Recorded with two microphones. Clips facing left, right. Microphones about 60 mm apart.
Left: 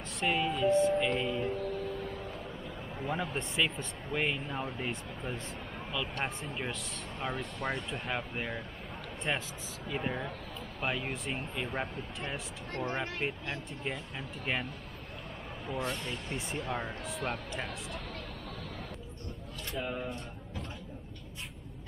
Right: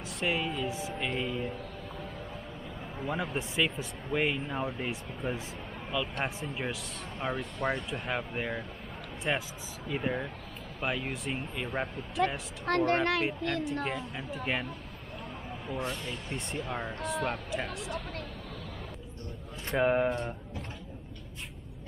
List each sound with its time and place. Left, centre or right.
0.2 s speech: centre
3.1 s speech: centre
12.6 s speech: right
13.8 s speech: centre
15.7 s speech: centre
19.7 s speech: right